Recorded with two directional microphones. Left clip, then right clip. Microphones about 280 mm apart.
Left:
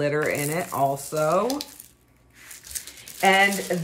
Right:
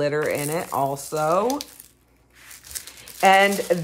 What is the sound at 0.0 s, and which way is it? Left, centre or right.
Speech, centre.